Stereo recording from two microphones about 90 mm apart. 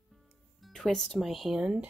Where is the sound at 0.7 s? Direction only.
5° left (ahead or behind).